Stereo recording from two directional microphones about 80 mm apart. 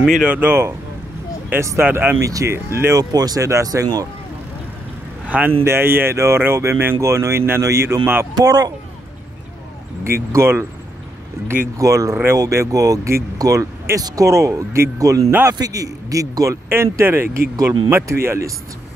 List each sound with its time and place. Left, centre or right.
0.0 s speech: centre
0.3 s speech: right
1.8 s speech: right
2.2 s speech: right
3.0 s speech: right
5.2 s speech: centre
5.6 s speech: right
8.4 s speech: right
10.0 s speech: right
11.8 s speech: right
16.6 s speech: right